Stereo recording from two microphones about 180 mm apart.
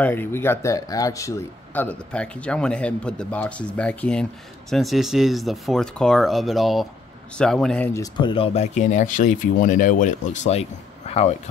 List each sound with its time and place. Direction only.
0.0 s a man's voice: 10° left (ahead or behind)
7.9 s speech: 20° left (ahead or behind)